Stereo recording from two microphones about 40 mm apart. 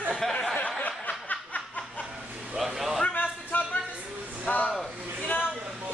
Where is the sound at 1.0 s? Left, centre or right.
Left.